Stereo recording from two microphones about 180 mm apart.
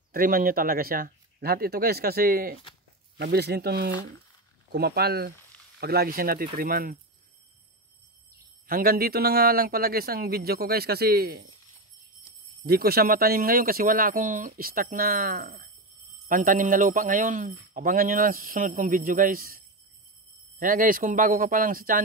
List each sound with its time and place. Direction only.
0.1 s speech: 50° right (ahead or behind)
3.2 s speech: 65° right (ahead or behind)
8.6 s speech: 55° right (ahead or behind)
12.6 s speech: 60° right (ahead or behind)